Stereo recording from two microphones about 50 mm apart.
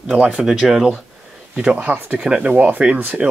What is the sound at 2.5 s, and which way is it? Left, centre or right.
Speech, right.